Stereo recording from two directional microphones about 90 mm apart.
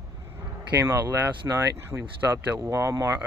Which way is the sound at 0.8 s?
25° right (ahead or behind).